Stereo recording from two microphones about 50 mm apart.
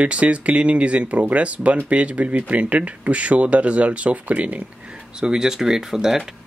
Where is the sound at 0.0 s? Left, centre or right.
Right; by 6.3 s centre.